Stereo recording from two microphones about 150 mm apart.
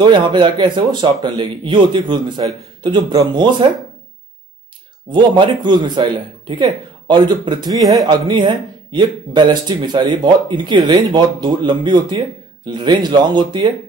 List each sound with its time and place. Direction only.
0.0 s a man's voice: 30° right (ahead or behind)
5.1 s a man's voice: 30° right (ahead or behind)
7.8 s speech: centre (ahead or behind)
8.3 s a man's voice: 30° right (ahead or behind)